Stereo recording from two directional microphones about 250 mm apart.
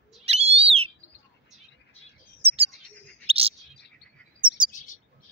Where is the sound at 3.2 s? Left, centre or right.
Right.